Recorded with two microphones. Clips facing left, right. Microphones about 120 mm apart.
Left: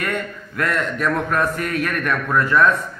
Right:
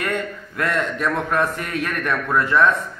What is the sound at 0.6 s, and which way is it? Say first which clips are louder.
A man's voice: left 1 dB; 20° right (ahead or behind).